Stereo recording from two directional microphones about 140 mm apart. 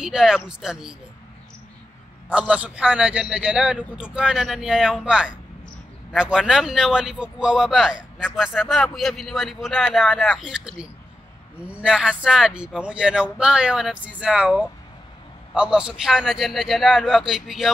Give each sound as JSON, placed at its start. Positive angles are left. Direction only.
{"t": 0.0, "sound": "a man's voice", "side_deg": -5}
{"t": 2.2, "sound": "a man's voice", "side_deg": -5}